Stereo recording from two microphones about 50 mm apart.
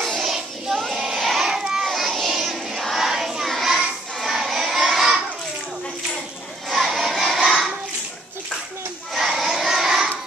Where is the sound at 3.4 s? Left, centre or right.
Centre.